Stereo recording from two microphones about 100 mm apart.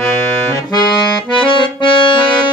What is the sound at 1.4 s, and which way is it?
Accordion, 60° left (ahead or behind).